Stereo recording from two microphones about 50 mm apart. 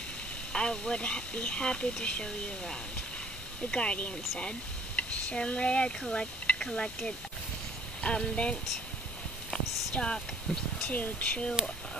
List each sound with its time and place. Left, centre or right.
0.5 s speech: centre
9.9 s speech: centre
10.9 s speech: left